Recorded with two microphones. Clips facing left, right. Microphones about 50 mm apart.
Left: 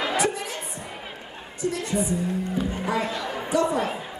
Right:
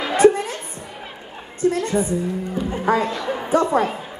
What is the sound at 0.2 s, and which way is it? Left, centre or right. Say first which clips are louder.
Music: right 11 dB; right.